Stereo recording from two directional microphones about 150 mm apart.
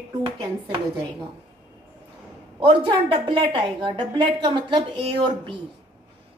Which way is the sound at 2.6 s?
35° right (ahead or behind).